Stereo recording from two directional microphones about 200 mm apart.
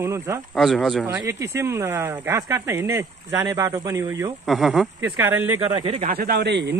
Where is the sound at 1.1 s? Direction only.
10° right (ahead or behind).